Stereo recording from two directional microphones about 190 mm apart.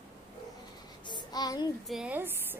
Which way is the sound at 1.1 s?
20° left (ahead or behind).